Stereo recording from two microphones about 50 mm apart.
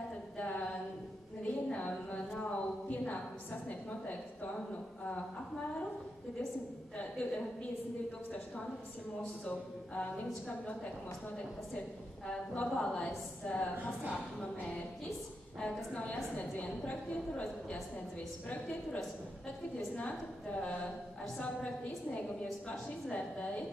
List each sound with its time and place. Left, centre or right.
0.4 s a sound: left
7.0 s a woman's voice: left
9.2 s a woman's voice: left
12.3 s a woman's voice: centre
15.9 s a woman's voice: left
20.0 s a woman's voice: left